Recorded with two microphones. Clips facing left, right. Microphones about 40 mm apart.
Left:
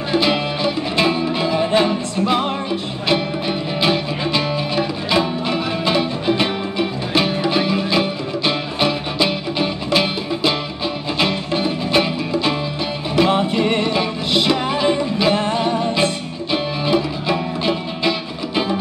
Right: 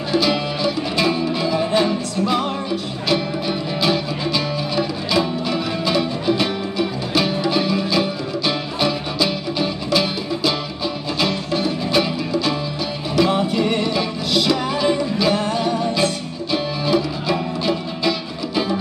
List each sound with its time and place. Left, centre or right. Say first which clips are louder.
0.1 s music: left 1 dB; left